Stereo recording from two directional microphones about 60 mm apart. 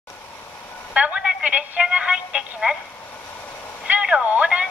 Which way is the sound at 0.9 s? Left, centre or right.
Centre.